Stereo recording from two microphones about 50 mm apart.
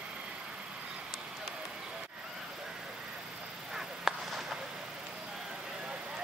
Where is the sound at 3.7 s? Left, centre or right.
Centre.